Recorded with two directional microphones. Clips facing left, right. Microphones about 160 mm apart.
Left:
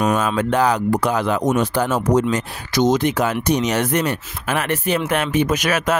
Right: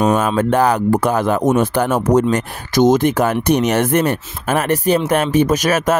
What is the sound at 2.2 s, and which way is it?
Speech, 50° right (ahead or behind).